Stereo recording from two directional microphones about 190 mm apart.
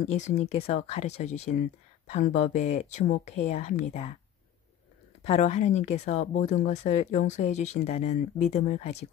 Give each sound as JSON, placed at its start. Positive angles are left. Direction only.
{"t": 0.0, "sound": "speech", "side_deg": 35}
{"t": 5.2, "sound": "speech", "side_deg": 35}